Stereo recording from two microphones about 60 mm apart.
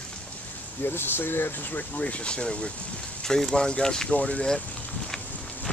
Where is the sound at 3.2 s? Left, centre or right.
Centre.